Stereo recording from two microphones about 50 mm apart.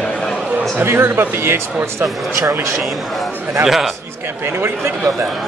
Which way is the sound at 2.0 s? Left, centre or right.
Right.